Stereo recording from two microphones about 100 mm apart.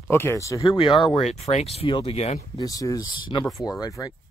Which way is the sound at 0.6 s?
60° left (ahead or behind).